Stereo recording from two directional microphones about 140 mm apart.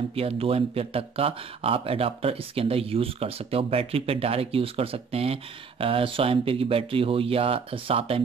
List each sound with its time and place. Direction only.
0.1 s speech: 45° right (ahead or behind)